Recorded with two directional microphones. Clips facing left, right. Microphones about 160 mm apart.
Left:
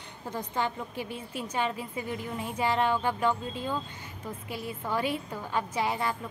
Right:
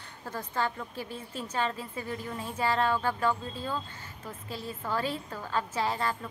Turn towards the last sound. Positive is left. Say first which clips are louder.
# left 1 dB
turn(degrees=15)  # may be behind; listen again after turning